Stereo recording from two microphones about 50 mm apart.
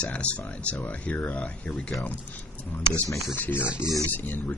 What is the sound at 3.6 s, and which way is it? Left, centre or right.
Speech, centre.